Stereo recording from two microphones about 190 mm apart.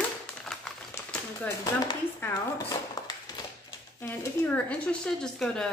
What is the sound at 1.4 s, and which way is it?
Speech, 15° left (ahead or behind).